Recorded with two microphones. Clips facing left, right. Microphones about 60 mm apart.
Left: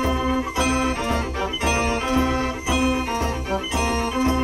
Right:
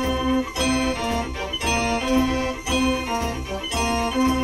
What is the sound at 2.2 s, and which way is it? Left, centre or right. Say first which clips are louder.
Organ: left 1 dB; centre.